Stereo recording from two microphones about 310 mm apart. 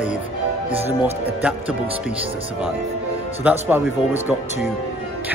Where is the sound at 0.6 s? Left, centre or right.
Centre.